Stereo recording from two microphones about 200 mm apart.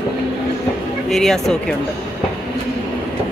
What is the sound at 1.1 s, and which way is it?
Speech, centre (ahead or behind).